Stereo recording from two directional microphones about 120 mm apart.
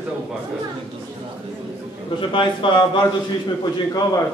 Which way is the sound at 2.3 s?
45° left (ahead or behind).